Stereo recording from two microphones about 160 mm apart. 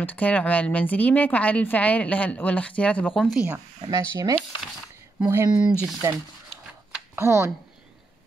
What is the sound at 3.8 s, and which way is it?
Speech, 20° right (ahead or behind).